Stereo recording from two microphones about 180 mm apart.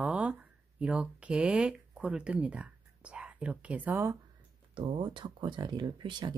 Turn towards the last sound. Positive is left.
turn(degrees=-25)  # may be behind; listen again after turning